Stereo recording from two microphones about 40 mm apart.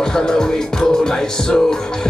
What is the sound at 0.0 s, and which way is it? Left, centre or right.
Music, centre.